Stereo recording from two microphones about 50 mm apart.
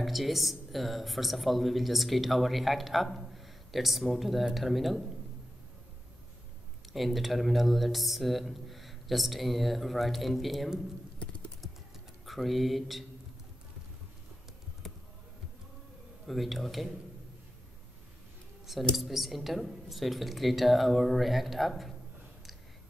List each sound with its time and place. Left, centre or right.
0.0 s speech: centre
6.9 s speech: centre
11.1 s typing: left
12.3 s speech: centre
16.3 s speech: centre
18.9 s speech: centre